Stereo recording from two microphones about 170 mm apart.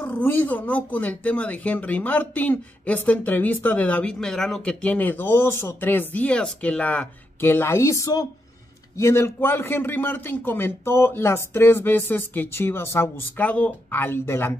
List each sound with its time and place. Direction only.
0.0 s speech: 10° left (ahead or behind)